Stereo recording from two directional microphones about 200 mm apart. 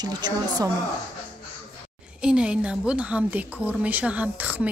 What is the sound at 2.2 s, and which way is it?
A woman's voice, 5° right (ahead or behind).